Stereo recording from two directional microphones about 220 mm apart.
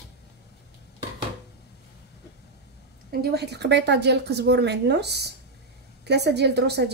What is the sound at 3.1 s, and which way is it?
A woman's voice, 45° right (ahead or behind).